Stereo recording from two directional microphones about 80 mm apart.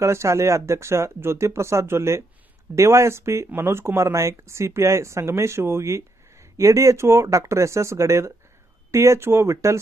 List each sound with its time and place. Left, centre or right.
0.0 s speech: right